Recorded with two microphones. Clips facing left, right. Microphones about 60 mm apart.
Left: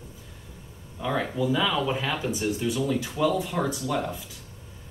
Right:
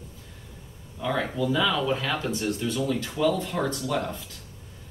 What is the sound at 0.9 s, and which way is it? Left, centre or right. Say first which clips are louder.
Speech: even; centre.